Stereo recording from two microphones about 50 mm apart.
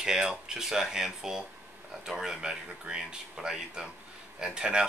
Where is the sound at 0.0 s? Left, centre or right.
Centre.